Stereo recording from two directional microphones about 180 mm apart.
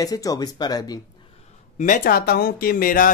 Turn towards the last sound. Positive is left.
turn(degrees=50)  # may be behind; listen again after turning